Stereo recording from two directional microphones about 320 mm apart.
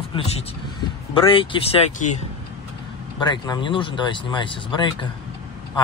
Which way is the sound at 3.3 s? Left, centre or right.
Centre.